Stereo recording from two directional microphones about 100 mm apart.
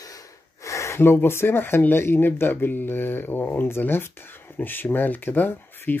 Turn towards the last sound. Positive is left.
turn(degrees=20)  # may be behind; listen again after turning